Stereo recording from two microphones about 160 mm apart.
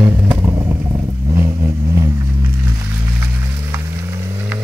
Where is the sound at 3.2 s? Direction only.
15° right (ahead or behind).